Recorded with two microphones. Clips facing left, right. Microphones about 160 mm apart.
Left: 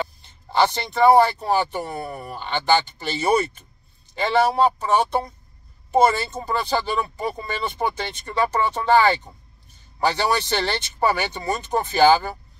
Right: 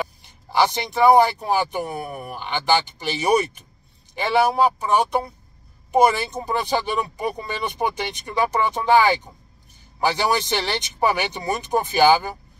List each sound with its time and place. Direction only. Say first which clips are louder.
0.2 s speech: even; 10° right (ahead or behind)